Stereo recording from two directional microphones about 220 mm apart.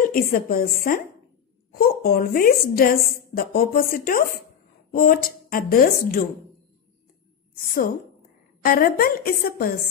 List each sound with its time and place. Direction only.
0.0 s a woman's voice: 40° left (ahead or behind)
1.7 s a woman's voice: 45° left (ahead or behind)
7.7 s a woman's voice: 40° left (ahead or behind)